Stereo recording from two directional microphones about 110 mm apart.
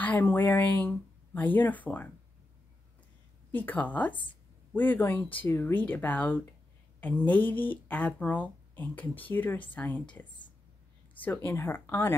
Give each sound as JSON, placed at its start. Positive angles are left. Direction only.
{"t": 0.0, "sound": "speech", "side_deg": 15}
{"t": 3.5, "sound": "speech", "side_deg": 15}
{"t": 11.1, "sound": "speech", "side_deg": 15}